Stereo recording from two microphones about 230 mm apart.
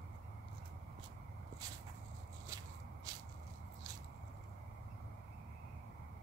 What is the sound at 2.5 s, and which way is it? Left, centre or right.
Biting, centre.